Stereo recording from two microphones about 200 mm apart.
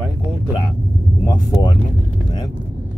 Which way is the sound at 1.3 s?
20° left (ahead or behind).